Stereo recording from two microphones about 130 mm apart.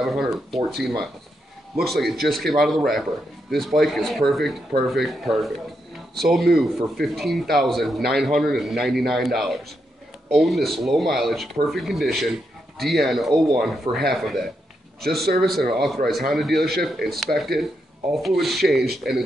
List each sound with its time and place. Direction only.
0.0 s speech: centre (ahead or behind)
13.9 s speech: 40° right (ahead or behind)
15.0 s speech: centre (ahead or behind)